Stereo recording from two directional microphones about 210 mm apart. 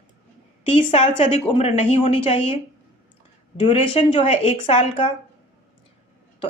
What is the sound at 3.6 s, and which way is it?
Speech, 25° left (ahead or behind).